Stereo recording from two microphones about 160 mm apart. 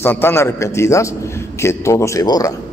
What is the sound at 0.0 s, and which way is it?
A man's voice, 15° left (ahead or behind).